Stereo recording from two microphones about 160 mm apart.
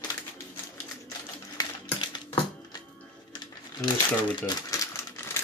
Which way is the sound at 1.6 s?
25° left (ahead or behind).